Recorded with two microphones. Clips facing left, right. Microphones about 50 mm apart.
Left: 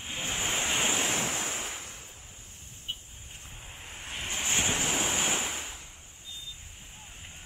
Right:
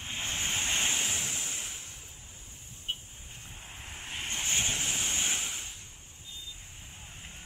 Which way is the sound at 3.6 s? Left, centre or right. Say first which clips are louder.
Even; centre.